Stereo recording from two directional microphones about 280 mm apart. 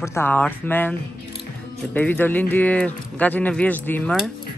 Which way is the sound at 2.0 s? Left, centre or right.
Centre.